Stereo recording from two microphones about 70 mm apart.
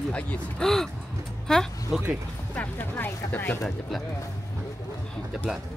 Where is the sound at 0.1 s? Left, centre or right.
Centre.